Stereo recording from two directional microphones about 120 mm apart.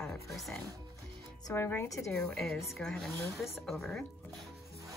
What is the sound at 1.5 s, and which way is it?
Speech, 20° left (ahead or behind).